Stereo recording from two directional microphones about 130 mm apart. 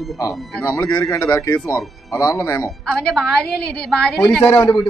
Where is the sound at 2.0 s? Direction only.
25° left (ahead or behind).